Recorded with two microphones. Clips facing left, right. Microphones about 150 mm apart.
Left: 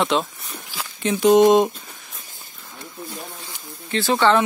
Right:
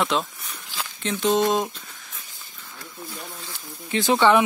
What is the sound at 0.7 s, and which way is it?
Speech, 10° left (ahead or behind).